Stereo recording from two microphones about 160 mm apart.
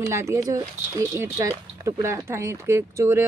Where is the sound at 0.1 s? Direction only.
15° right (ahead or behind).